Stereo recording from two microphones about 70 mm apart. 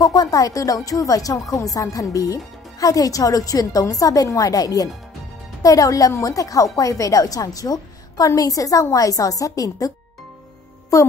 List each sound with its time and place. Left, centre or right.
0.0 s a child's voice: left